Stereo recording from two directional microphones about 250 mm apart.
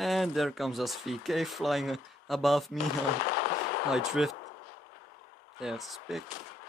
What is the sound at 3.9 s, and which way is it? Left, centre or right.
Speech, centre.